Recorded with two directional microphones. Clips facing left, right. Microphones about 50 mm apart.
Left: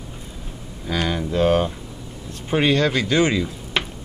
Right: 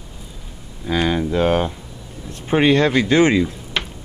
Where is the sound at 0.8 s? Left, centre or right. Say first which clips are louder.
Right 4 dB; right.